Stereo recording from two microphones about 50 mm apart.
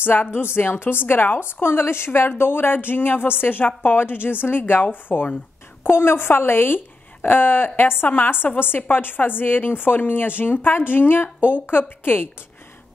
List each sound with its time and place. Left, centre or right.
0.0 s a woman's voice: left